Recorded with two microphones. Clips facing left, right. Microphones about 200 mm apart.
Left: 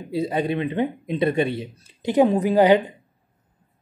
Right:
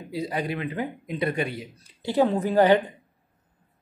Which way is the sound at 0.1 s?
25° left (ahead or behind).